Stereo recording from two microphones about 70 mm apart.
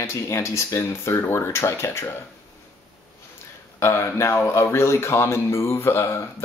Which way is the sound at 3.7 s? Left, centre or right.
Left.